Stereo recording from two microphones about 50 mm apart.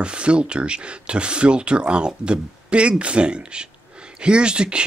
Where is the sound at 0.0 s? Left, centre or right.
Right.